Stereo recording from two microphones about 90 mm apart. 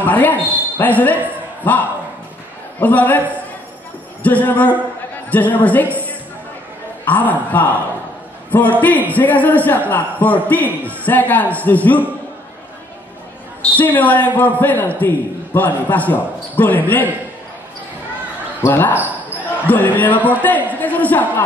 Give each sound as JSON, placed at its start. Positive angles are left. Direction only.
{"t": 0.0, "sound": "a man's voice", "side_deg": 20}
{"t": 7.1, "sound": "a man's voice", "side_deg": 20}
{"t": 13.6, "sound": "speech", "side_deg": 20}
{"t": 18.6, "sound": "a man's voice", "side_deg": 20}